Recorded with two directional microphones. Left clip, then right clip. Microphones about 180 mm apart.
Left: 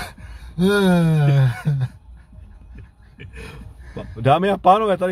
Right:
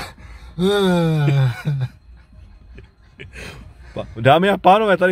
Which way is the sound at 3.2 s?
65° right (ahead or behind).